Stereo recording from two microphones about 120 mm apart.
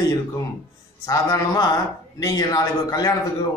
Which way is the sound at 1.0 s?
30° left (ahead or behind).